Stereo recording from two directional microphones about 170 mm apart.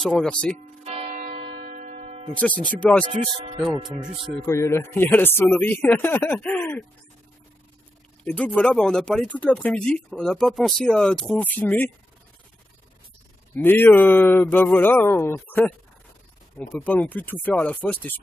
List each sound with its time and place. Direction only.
0.0 s speech: 5° left (ahead or behind)
0.8 s a sound: 35° right (ahead or behind)
2.4 s speech: 10° left (ahead or behind)
3.7 s speech: 25° right (ahead or behind)
4.5 s speech: 15° left (ahead or behind)
8.2 s speech: 10° left (ahead or behind)
13.6 s speech: 10° left (ahead or behind)